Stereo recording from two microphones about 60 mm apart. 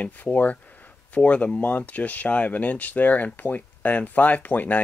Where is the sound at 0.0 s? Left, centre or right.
Left.